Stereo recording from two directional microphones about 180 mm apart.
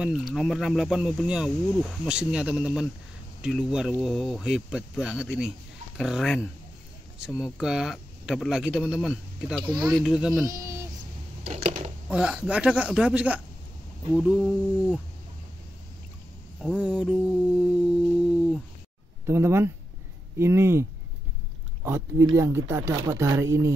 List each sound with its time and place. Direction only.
0.0 s speech: centre (ahead or behind)
10.4 s speech: 15° right (ahead or behind)
11.4 s a sound: 40° right (ahead or behind)
12.1 s speech: 5° right (ahead or behind)
16.8 s speech: 5° right (ahead or behind)
18.1 s busy signal: 5° right (ahead or behind)
19.2 s speech: 15° right (ahead or behind)
22.3 s speech: 15° right (ahead or behind)